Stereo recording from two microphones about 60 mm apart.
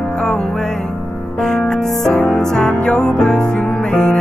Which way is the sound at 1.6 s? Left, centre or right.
Centre.